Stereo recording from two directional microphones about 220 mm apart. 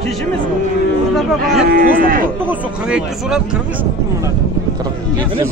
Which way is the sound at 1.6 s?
40° right (ahead or behind).